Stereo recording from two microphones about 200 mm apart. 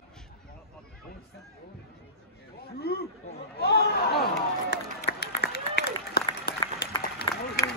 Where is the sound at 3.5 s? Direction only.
55° left (ahead or behind).